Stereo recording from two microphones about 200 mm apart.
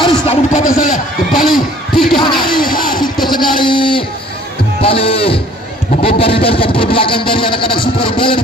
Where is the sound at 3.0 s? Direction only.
20° left (ahead or behind).